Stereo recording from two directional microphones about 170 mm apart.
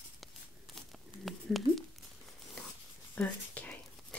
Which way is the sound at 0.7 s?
Centre (ahead or behind).